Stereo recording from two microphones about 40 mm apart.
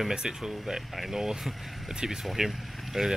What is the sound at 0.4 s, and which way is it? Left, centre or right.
Speech, centre.